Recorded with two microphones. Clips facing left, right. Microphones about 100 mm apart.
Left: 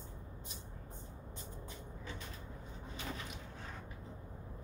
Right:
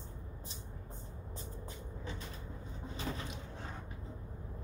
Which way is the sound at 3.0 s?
30° right (ahead or behind).